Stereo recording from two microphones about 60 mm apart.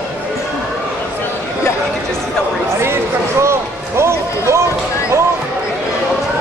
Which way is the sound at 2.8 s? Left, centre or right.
Right.